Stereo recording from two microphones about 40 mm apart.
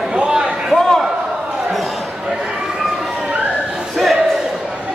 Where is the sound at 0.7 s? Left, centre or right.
Centre.